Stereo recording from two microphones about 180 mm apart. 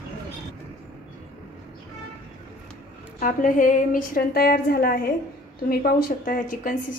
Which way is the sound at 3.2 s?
50° left (ahead or behind).